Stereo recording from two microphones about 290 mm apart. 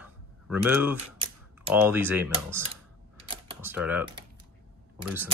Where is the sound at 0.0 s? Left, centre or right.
Centre.